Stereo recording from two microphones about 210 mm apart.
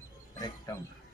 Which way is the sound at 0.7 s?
15° left (ahead or behind).